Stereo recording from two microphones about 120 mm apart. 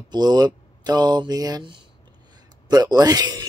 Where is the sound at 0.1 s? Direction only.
35° right (ahead or behind).